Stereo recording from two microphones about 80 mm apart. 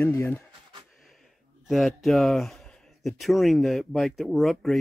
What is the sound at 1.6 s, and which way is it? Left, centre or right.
Speech, centre.